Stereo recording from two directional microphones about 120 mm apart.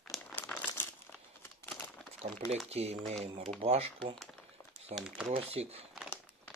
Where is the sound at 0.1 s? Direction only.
Centre (ahead or behind).